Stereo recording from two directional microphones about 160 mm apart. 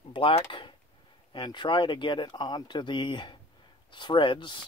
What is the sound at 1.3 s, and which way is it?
Speech, 30° left (ahead or behind).